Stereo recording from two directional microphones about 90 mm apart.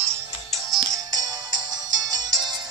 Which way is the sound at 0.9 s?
45° right (ahead or behind).